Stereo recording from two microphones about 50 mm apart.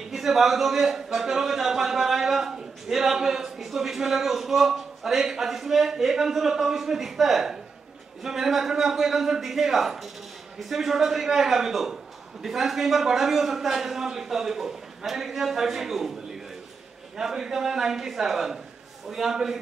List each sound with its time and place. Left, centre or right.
0.1 s a man's voice: centre
17.2 s a man's voice: centre